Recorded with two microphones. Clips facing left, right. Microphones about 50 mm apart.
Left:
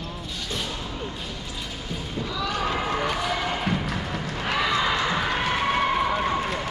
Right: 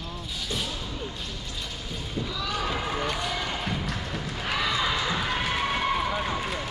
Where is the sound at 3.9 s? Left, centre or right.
Centre.